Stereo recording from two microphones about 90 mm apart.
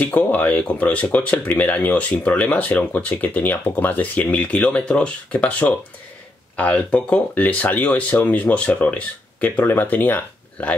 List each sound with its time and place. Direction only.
0.0 s speech: 20° left (ahead or behind)